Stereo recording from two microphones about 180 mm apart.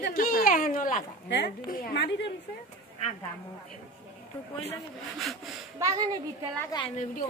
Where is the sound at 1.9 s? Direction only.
75° left (ahead or behind).